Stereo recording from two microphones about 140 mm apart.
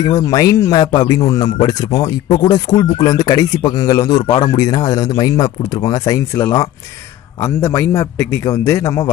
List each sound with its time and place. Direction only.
0.0 s speech: 30° left (ahead or behind)